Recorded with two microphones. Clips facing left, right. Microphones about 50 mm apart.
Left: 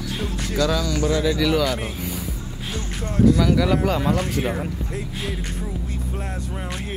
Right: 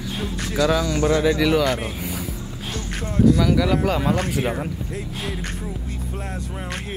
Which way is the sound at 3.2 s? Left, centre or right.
Centre.